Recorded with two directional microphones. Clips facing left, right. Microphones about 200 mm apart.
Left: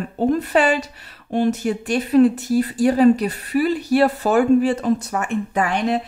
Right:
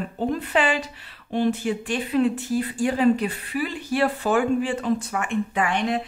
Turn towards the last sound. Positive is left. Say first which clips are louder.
# left 4 dB
turn(degrees=40)  # may be behind; listen again after turning